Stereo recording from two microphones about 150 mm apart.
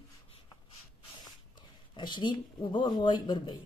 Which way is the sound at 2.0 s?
30° left (ahead or behind).